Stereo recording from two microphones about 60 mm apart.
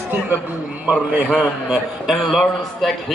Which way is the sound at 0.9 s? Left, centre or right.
Right.